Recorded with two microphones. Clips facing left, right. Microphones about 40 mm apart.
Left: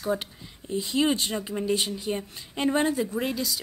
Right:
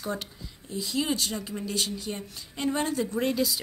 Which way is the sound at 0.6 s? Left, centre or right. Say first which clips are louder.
Left 5 dB; left.